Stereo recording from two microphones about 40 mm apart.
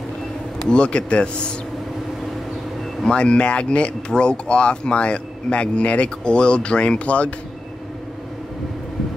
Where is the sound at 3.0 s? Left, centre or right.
Left.